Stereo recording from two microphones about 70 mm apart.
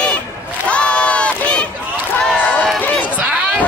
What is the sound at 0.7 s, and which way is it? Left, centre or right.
Crowd, centre.